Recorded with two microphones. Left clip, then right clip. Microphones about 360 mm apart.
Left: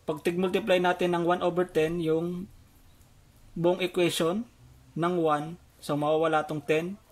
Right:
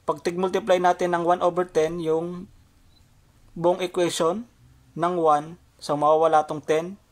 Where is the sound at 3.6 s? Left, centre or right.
Centre.